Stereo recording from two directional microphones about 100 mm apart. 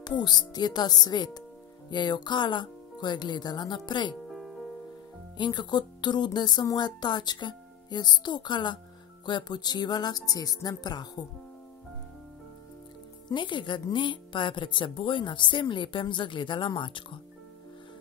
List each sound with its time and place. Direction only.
0.2 s speech: 45° left (ahead or behind)
4.3 s music: centre (ahead or behind)
5.4 s speech: 45° left (ahead or behind)
13.3 s speech: 55° left (ahead or behind)